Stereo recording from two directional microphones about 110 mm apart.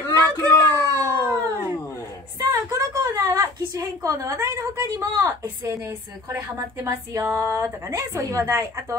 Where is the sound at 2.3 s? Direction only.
30° right (ahead or behind).